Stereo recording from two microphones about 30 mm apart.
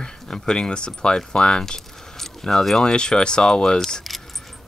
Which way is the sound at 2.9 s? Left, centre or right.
Left.